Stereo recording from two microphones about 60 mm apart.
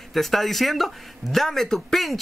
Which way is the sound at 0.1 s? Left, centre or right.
Centre.